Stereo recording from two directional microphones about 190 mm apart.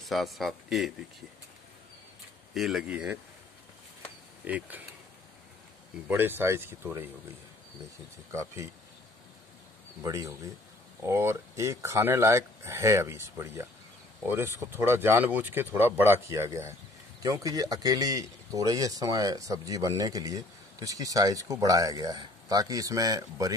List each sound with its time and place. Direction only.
0.0 s speech: centre (ahead or behind)
2.5 s speech: centre (ahead or behind)
4.5 s speech: 10° right (ahead or behind)
6.0 s speech: 10° right (ahead or behind)
8.3 s speech: 15° right (ahead or behind)
10.0 s speech: 15° right (ahead or behind)